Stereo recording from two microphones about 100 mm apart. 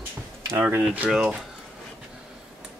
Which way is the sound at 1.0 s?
5° right (ahead or behind).